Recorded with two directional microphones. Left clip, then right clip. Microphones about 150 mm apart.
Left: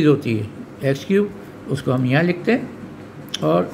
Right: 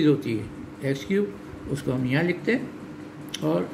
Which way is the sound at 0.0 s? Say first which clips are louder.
Left 5 dB; 35° left (ahead or behind).